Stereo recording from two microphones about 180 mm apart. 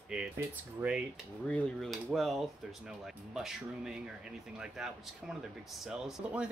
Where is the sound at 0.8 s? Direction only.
5° right (ahead or behind).